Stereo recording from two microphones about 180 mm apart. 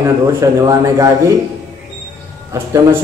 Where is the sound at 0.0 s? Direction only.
15° right (ahead or behind).